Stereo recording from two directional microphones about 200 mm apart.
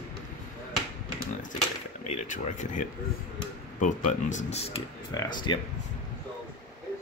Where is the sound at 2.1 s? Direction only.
40° left (ahead or behind); by 5.6 s 20° left (ahead or behind).